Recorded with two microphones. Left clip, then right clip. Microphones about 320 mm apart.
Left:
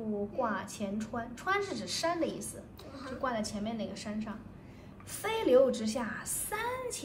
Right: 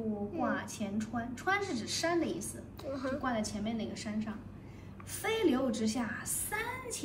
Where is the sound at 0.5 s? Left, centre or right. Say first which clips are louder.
Even; centre.